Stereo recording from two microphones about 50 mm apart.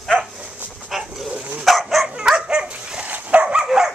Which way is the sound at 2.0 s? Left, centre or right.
Centre.